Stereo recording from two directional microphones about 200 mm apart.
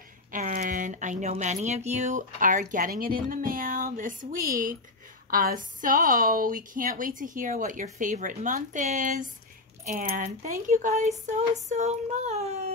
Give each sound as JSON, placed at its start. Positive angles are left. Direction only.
{"t": 0.3, "sound": "a woman's voice", "side_deg": -45}